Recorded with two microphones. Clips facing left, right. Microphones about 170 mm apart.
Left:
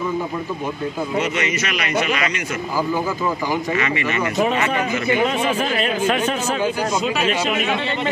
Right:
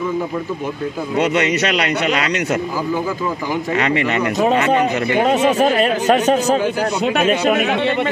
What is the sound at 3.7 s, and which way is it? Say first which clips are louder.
Speech: right 4 dB; 65° right (ahead or behind).